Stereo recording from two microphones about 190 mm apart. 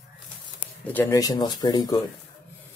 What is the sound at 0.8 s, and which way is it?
Speech, 10° left (ahead or behind).